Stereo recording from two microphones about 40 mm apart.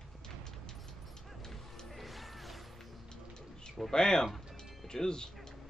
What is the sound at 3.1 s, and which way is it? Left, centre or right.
Bird, centre.